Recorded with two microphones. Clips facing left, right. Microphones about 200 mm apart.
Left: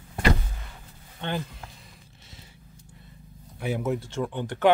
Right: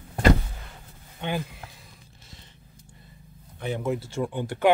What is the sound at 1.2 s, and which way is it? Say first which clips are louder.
Speech: right 1 dB; 10° right (ahead or behind).